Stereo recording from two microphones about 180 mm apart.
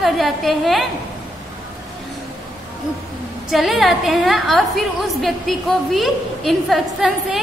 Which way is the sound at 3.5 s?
Centre (ahead or behind).